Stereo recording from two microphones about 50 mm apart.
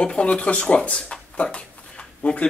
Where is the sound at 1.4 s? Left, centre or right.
Left.